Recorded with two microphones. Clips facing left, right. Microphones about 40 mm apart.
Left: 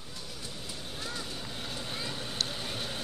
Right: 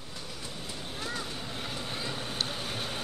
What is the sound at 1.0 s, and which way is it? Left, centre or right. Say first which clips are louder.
Vehicle: right 3 dB; centre.